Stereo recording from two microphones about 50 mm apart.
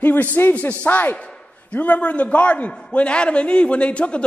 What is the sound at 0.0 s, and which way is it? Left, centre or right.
A man's voice, left.